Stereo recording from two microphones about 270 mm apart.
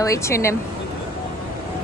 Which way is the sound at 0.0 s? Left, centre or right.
Centre.